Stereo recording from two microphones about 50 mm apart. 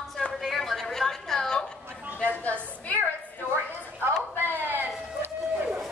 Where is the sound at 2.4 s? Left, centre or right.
Left.